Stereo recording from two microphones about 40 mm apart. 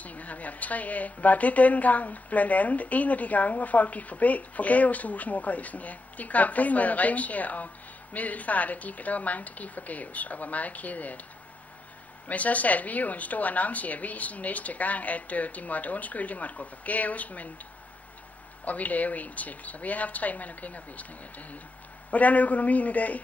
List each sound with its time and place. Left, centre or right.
0.0 s a woman's voice: left
12.3 s a woman's voice: left
18.7 s a woman's voice: left